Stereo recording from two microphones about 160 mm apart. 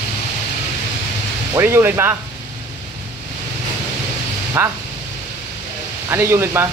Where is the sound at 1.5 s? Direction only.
15° right (ahead or behind).